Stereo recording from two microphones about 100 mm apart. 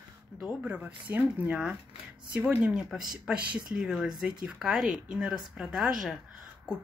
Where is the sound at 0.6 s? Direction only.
15° right (ahead or behind).